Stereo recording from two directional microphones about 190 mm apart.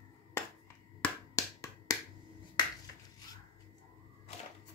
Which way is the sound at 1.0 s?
15° left (ahead or behind).